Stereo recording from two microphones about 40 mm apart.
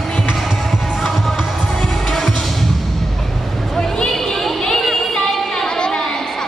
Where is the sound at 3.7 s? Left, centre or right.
Centre.